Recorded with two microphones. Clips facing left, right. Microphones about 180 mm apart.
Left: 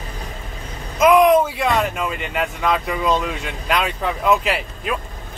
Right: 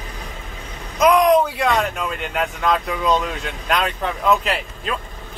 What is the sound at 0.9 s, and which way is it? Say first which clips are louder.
Speech: left 1 dB; 5° left (ahead or behind).